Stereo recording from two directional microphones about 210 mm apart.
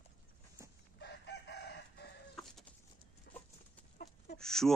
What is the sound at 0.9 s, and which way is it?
Chicken, 55° left (ahead or behind).